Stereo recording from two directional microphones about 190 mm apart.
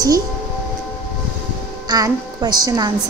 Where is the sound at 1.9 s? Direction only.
20° right (ahead or behind).